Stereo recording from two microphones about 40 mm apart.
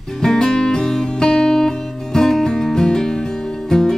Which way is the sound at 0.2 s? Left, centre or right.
Centre.